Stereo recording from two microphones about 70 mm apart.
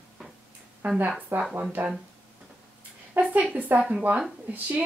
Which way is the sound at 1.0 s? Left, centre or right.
Right.